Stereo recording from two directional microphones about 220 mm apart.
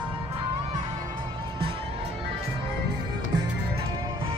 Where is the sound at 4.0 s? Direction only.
25° right (ahead or behind).